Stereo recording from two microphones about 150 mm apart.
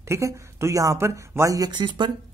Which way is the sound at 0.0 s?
20° right (ahead or behind).